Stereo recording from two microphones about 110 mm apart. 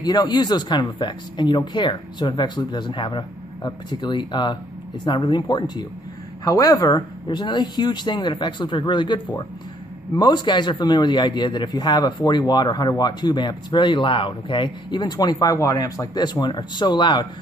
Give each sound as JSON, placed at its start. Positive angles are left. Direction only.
{"t": 0.0, "sound": "speech", "side_deg": 40}
{"t": 6.4, "sound": "a man's voice", "side_deg": 30}